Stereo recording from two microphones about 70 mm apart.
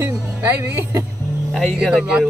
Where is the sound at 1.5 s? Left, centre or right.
Centre.